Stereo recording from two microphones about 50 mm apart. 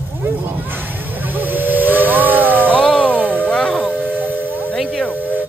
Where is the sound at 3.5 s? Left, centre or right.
Left.